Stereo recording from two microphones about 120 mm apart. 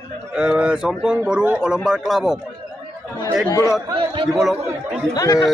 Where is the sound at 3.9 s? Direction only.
45° right (ahead or behind).